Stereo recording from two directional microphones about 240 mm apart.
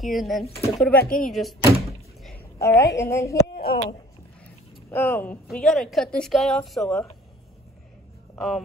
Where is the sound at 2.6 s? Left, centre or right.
Centre.